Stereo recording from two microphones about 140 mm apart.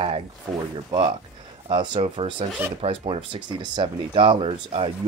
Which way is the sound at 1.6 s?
35° right (ahead or behind).